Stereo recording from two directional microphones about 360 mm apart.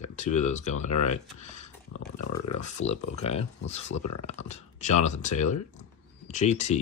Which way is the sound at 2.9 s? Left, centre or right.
Centre.